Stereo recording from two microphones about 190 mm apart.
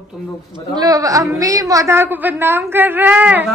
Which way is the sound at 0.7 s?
20° right (ahead or behind).